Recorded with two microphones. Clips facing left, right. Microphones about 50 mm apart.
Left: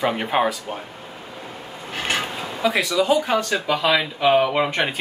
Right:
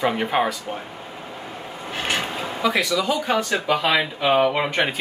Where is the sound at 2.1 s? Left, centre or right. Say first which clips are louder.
Even; centre.